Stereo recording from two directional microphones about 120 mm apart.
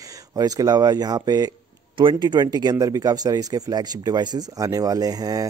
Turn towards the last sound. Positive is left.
turn(degrees=-30)  # may be behind; listen again after turning